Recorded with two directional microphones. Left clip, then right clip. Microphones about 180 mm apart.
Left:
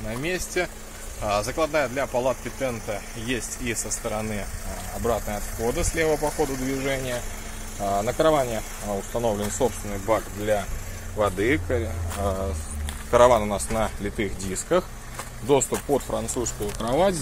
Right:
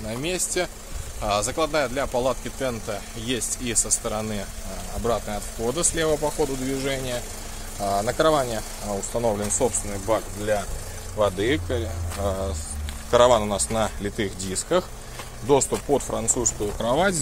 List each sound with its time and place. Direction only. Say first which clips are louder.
0.1 s speech: even; 20° right (ahead or behind)
5.6 s speech: even; 30° right (ahead or behind); by 16.4 s 10° right (ahead or behind)
16.8 s speech: even; 30° right (ahead or behind)